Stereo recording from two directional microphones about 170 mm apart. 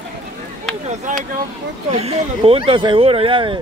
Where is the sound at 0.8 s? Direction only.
45° right (ahead or behind).